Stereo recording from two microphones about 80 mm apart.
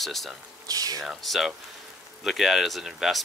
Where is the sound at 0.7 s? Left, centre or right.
Right.